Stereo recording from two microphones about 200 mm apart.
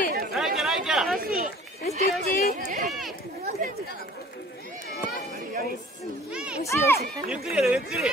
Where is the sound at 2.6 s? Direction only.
50° right (ahead or behind).